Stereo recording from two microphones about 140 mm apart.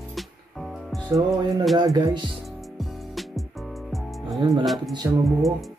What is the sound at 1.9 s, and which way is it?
Speech, 25° right (ahead or behind).